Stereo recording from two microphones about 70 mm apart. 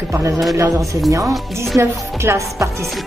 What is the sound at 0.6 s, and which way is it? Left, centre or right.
Music, right.